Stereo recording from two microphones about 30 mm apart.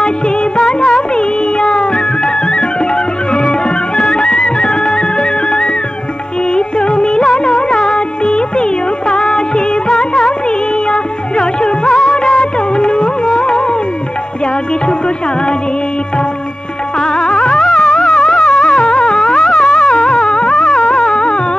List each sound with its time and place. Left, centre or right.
0.0 s music: left
17.0 s music: left